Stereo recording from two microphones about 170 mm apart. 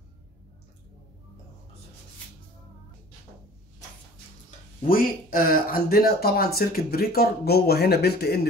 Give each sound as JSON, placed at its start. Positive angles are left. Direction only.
{"t": 4.8, "sound": "speech", "side_deg": 55}